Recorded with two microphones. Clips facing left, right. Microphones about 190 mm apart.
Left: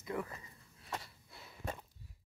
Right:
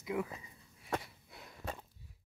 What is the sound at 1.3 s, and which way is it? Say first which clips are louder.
Gasp: right 2 dB; centre (ahead or behind).